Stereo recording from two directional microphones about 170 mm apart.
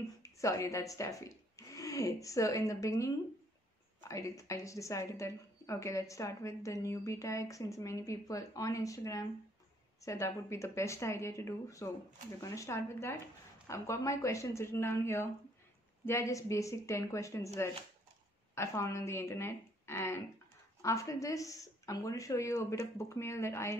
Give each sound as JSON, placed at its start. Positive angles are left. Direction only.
{"t": 0.2, "sound": "speech", "side_deg": 20}
{"t": 4.1, "sound": "a woman's voice", "side_deg": 20}
{"t": 18.5, "sound": "a woman's voice", "side_deg": 15}